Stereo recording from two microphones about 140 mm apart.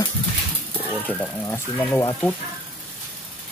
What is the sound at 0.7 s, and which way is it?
Speech, 10° left (ahead or behind).